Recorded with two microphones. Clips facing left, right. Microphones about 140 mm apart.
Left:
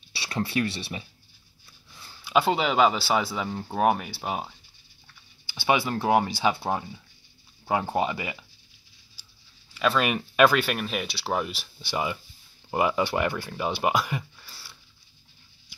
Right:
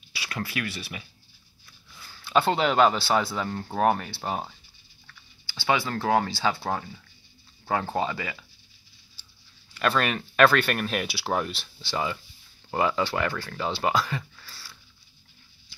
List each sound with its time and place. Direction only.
0.1 s speech: 35° left (ahead or behind)
2.2 s speech: 10° left (ahead or behind)
5.0 s speech: 20° left (ahead or behind)
9.8 s speech: 5° left (ahead or behind)
11.8 s speech: 15° left (ahead or behind)